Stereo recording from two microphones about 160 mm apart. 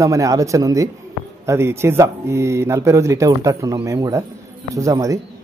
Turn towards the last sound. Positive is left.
turn(degrees=-20)  # may be behind; listen again after turning